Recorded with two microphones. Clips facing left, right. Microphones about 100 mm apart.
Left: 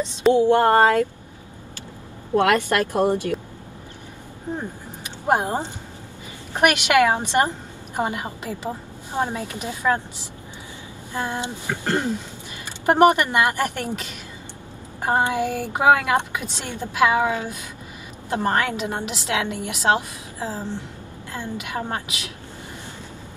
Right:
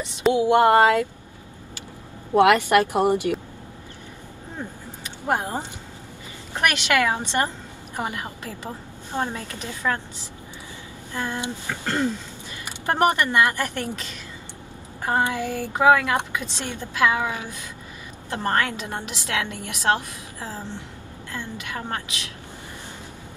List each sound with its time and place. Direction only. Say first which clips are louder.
0.3 s speech: left 1 dB; 15° right (ahead or behind)
2.3 s speech: right 3 dB; 15° right (ahead or behind)
5.3 s a woman's voice: left 4 dB; 20° left (ahead or behind)
11.1 s a woman's voice: left 2 dB; 15° left (ahead or behind)